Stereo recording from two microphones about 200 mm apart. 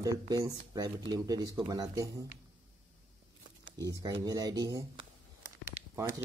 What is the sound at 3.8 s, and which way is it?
Speech, 20° right (ahead or behind).